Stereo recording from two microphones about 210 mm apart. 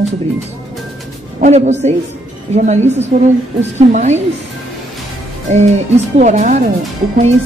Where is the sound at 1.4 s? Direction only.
30° right (ahead or behind).